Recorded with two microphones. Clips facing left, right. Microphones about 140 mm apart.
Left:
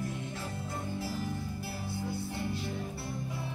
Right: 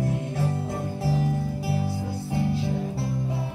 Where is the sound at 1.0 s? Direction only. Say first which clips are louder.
Right 10 dB; 85° right.